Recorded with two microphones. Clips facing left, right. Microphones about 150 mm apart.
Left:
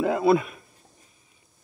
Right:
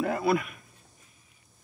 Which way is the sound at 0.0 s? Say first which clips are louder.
Left 5 dB; 20° left (ahead or behind).